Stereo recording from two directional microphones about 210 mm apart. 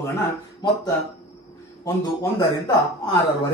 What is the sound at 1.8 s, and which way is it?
A man's voice, 20° left (ahead or behind).